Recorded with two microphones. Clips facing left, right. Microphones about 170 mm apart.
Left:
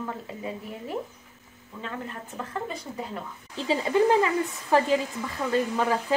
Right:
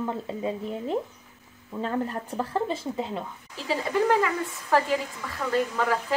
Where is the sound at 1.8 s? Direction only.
40° right (ahead or behind).